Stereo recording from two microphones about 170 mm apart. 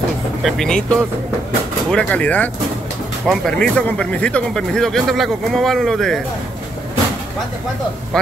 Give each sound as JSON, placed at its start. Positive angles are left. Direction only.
{"t": 0.4, "sound": "speech", "side_deg": 0}